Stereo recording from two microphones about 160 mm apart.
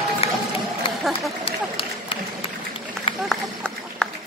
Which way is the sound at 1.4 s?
35° left (ahead or behind).